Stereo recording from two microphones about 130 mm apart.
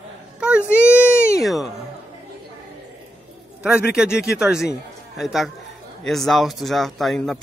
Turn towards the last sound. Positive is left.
turn(degrees=0)  # may be behind; listen again after turning